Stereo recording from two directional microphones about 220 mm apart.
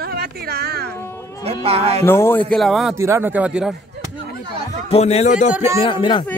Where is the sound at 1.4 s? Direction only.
25° right (ahead or behind).